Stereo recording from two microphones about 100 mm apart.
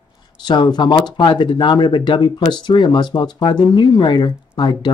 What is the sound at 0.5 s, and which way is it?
Speech, 50° left (ahead or behind).